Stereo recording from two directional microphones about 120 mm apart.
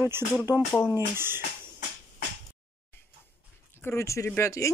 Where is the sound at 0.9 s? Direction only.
20° right (ahead or behind).